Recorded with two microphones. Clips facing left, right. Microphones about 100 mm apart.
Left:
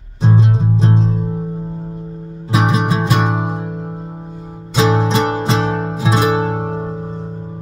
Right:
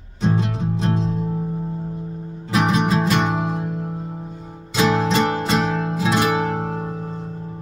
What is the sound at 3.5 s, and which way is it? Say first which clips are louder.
Music: left 1 dB; 30° left (ahead or behind).